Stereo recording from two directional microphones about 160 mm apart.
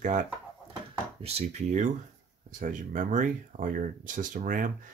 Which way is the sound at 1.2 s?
45° right (ahead or behind).